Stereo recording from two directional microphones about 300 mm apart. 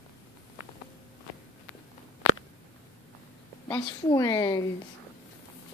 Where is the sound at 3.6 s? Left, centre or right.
Centre.